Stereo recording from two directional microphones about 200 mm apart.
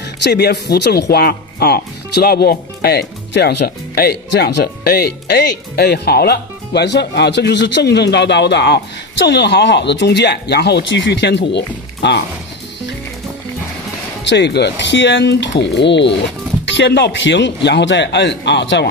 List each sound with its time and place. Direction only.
0.2 s speech: 55° left (ahead or behind)
14.3 s speech: 60° left (ahead or behind)